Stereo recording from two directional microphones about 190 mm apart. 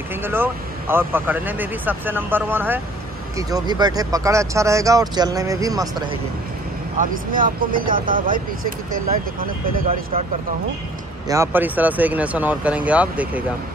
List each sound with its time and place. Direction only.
0.1 s speech: 10° right (ahead or behind)
7.0 s speech: 45° right (ahead or behind)
11.2 s speech: 15° right (ahead or behind)